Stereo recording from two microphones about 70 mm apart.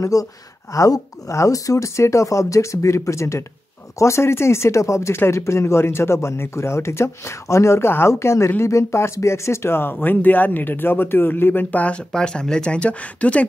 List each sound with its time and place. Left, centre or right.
0.0 s speech: left
12.1 s speech: centre